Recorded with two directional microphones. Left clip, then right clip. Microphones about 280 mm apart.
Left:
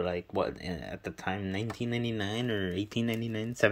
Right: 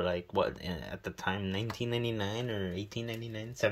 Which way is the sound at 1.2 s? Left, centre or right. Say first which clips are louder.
Even; centre.